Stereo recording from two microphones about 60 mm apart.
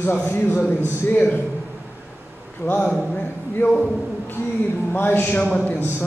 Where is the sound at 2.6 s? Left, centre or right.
Left.